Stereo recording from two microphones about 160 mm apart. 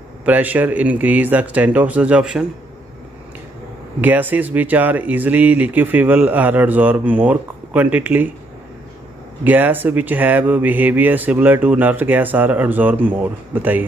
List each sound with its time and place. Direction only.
0.2 s speech: 10° right (ahead or behind)
4.0 s speech: 10° right (ahead or behind)
9.4 s speech: 10° right (ahead or behind)